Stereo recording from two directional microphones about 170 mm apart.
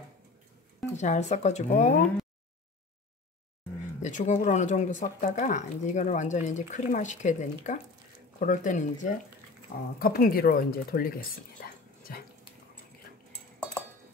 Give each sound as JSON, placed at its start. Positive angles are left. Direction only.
{"t": 0.9, "sound": "speech", "side_deg": 45}
{"t": 4.0, "sound": "speech", "side_deg": 45}
{"t": 9.9, "sound": "speech", "side_deg": 60}